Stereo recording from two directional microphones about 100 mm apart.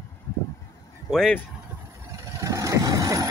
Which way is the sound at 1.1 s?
5° left (ahead or behind).